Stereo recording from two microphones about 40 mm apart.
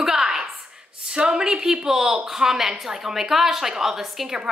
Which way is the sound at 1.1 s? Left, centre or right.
Centre.